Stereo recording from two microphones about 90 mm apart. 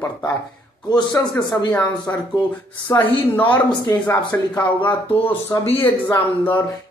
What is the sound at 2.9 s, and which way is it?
Speech, 20° left (ahead or behind).